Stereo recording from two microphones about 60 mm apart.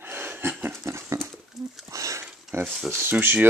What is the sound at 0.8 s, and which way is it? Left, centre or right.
Dog, right.